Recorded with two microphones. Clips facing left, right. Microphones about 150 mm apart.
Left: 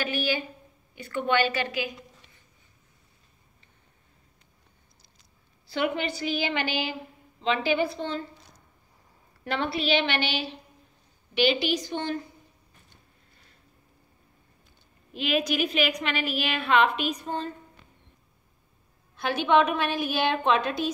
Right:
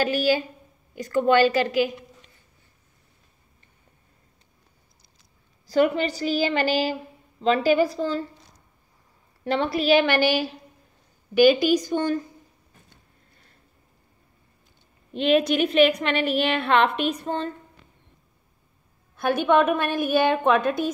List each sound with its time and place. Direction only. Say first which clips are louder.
0.0 s a woman's voice: right 7 dB; 40° right (ahead or behind)
5.7 s a woman's voice: right 7 dB; 40° right (ahead or behind)
9.4 s a woman's voice: right 5 dB; 35° right (ahead or behind)
15.5 s a woman's voice: right 8 dB; 60° right (ahead or behind)
19.1 s a woman's voice: right 3 dB; 55° right (ahead or behind)